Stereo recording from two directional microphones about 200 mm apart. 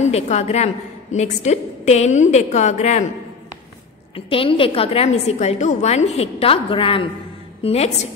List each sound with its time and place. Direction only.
0.0 s a woman's voice: 35° left (ahead or behind)
4.1 s a woman's voice: 25° left (ahead or behind)